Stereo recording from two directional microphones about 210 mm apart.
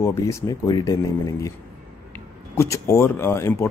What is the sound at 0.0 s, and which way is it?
Speech, 15° left (ahead or behind).